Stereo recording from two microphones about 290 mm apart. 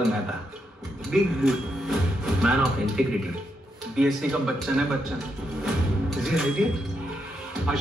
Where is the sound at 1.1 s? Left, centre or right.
Centre.